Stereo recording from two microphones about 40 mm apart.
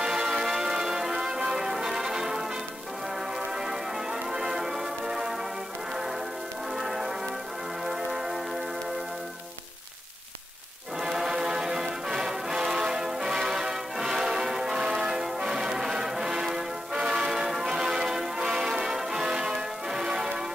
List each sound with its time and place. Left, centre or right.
0.0 s music: centre
4.1 s music: centre
6.8 s change ringing: centre
11.0 s music: centre
15.0 s change ringing: centre